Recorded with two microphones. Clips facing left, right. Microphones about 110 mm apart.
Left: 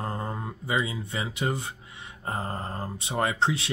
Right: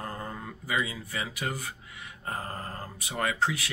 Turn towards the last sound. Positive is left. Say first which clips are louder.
# left 3 dB
turn(degrees=25)  # may be behind; listen again after turning